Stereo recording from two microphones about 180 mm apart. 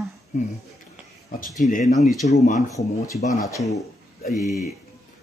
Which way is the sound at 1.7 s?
40° left (ahead or behind).